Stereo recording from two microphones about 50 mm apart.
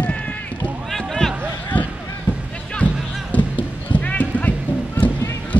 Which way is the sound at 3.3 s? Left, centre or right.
Left.